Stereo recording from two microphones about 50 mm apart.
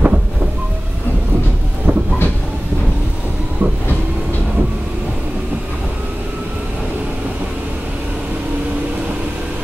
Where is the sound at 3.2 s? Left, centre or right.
Centre.